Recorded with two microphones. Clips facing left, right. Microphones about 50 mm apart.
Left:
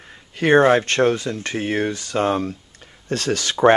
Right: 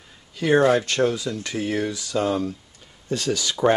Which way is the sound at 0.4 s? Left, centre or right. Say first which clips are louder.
Left 4 dB; left.